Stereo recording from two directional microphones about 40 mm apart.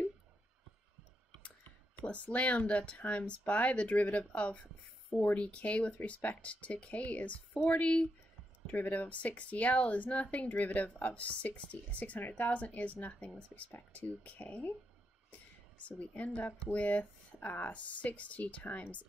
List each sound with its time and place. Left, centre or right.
2.0 s speech: left
13.9 s speech: left
15.8 s speech: left
17.7 s speech: left